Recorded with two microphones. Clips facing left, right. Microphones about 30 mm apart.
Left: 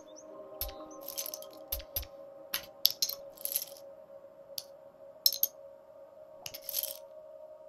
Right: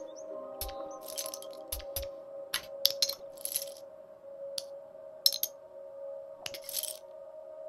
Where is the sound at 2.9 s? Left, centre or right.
Right.